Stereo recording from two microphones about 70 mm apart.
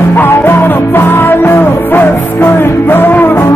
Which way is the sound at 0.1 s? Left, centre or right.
Left.